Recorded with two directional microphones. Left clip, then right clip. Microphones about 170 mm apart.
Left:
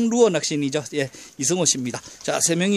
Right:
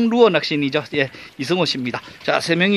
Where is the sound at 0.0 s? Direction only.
20° left (ahead or behind).